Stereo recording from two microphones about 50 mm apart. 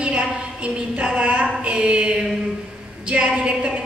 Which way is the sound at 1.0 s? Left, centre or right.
Right.